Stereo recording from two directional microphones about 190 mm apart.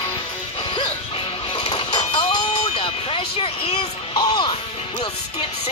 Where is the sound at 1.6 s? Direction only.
30° left (ahead or behind).